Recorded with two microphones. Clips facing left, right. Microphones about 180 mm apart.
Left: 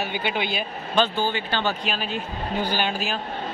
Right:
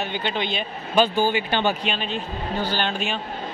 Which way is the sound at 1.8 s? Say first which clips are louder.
Right 1 dB; 5° left (ahead or behind).